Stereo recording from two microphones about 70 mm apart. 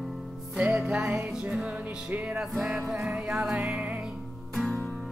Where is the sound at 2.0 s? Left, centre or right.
Centre.